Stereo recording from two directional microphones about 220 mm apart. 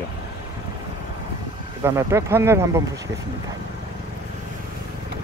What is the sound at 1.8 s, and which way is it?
Speech, 10° right (ahead or behind).